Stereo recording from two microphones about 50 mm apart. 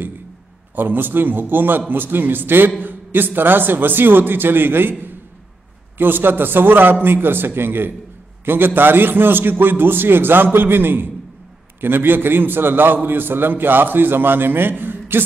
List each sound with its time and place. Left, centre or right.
0.7 s a man's voice: right
5.9 s a man's voice: right